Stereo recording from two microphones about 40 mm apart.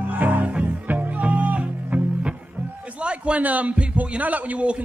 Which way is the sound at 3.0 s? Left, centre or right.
Right.